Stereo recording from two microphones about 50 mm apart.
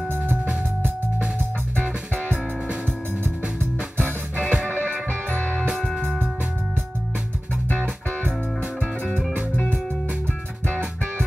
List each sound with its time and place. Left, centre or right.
4.4 s music: centre
4.6 s music: left